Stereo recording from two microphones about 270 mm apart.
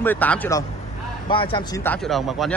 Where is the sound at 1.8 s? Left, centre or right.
Centre.